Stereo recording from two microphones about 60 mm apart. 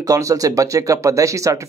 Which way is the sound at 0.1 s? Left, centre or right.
Right.